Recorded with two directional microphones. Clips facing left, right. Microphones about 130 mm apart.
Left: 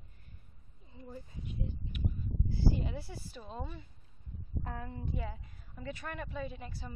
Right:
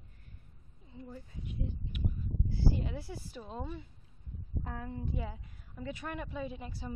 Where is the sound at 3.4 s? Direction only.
5° right (ahead or behind).